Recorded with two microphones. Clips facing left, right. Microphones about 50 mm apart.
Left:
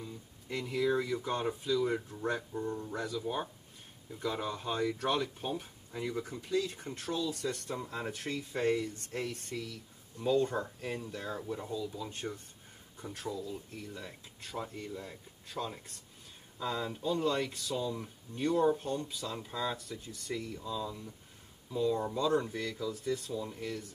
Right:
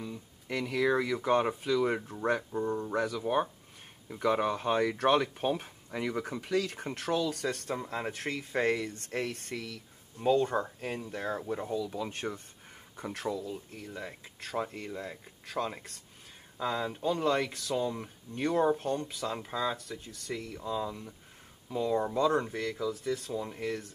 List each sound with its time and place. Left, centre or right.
0.0 s speech: right
2.0 s speech: right
2.9 s speech: right
7.9 s speech: right
10.2 s speech: right
11.7 s speech: right
16.5 s speech: right
17.0 s speech: right
19.5 s speech: right
19.8 s speech: right